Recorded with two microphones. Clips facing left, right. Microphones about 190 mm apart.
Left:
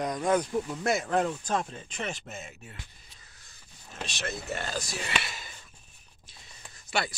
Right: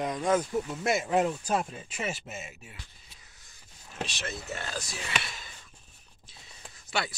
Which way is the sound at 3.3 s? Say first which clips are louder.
Left 1 dB; 20° right (ahead or behind).